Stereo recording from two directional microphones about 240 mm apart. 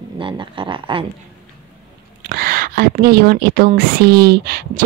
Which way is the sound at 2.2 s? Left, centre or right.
Right.